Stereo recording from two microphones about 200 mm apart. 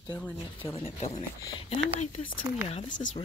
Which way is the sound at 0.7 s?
30° left (ahead or behind).